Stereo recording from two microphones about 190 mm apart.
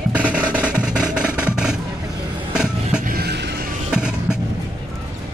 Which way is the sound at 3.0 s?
50° right (ahead or behind).